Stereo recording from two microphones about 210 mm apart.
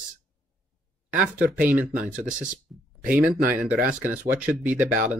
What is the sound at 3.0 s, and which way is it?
Speech, 5° right (ahead or behind).